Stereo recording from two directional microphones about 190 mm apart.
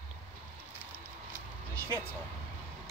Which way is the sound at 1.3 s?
10° left (ahead or behind).